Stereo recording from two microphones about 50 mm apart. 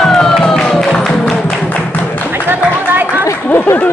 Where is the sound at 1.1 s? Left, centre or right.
Centre.